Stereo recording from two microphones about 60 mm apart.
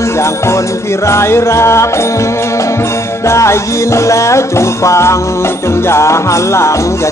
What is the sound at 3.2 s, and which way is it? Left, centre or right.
Music, left.